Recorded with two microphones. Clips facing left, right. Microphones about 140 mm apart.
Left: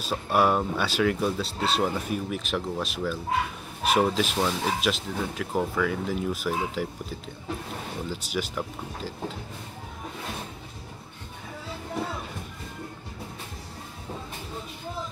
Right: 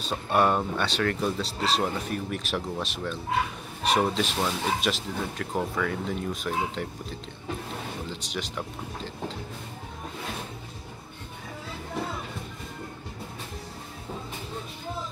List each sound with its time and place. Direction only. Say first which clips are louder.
0.0 s speech: even; 5° left (ahead or behind)